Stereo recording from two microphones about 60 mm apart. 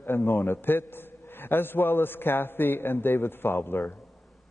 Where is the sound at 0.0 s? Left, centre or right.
Left.